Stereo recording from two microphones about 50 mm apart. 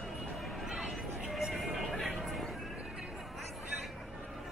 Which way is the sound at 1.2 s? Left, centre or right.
Centre.